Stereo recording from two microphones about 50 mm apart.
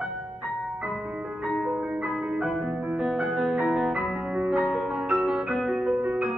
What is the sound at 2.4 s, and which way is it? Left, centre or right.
Music, centre.